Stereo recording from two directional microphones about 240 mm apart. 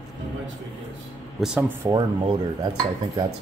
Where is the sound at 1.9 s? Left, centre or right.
Centre.